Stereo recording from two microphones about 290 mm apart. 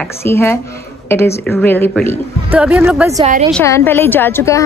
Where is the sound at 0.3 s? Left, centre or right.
Centre.